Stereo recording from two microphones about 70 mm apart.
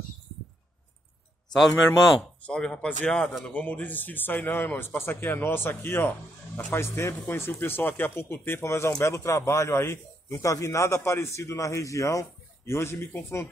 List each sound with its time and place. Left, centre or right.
2.4 s a man's voice: centre; by 13.5 s left